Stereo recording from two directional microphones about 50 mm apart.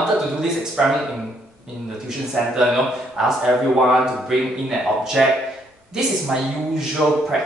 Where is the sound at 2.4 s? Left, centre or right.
Centre.